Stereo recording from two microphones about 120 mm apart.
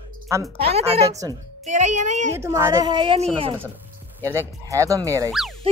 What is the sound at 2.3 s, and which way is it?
Speech, 20° right (ahead or behind).